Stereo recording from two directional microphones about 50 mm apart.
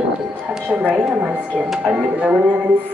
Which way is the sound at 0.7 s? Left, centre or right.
Right.